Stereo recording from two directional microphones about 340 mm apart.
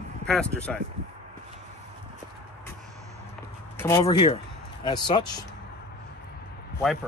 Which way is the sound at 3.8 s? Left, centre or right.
Centre.